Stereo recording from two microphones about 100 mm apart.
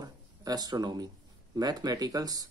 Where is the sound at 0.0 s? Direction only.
40° right (ahead or behind).